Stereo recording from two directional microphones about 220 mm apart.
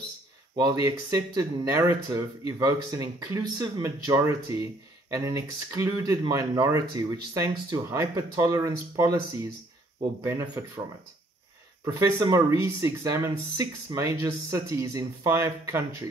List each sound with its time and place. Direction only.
0.8 s speech: 15° right (ahead or behind)
11.8 s speech: 15° right (ahead or behind)